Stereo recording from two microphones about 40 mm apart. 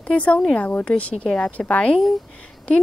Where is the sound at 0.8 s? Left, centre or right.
Left.